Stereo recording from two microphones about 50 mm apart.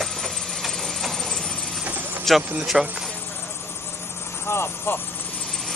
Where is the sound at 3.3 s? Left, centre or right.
Left.